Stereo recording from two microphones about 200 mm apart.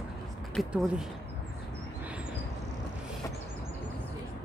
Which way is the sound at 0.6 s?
Centre (ahead or behind).